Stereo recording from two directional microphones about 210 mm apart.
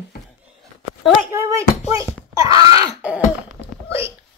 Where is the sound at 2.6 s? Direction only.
15° right (ahead or behind).